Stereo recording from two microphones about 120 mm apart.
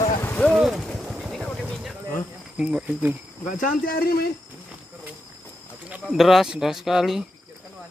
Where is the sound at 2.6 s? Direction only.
10° right (ahead or behind).